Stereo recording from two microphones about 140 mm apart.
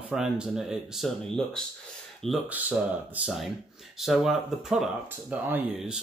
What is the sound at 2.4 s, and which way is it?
Speech, 10° right (ahead or behind).